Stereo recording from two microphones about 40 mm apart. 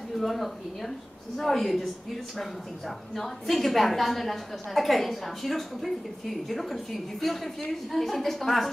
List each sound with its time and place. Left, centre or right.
0.1 s a woman's voice: centre
3.2 s a woman's voice: centre